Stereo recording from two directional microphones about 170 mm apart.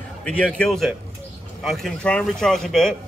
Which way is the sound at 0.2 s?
5° left (ahead or behind).